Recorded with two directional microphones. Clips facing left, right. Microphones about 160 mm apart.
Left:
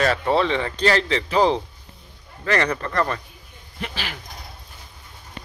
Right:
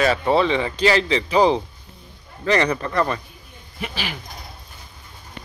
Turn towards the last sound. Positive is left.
turn(degrees=-10)  # may be behind; listen again after turning